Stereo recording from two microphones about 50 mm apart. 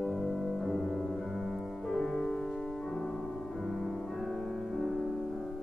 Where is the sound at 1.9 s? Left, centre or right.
Centre.